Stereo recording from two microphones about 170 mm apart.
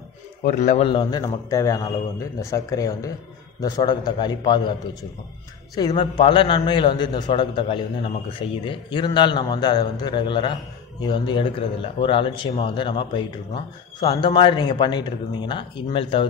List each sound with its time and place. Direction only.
0.4 s a man's voice: 50° left (ahead or behind); by 4.7 s 25° left (ahead or behind)
5.9 s a man's voice: 30° left (ahead or behind)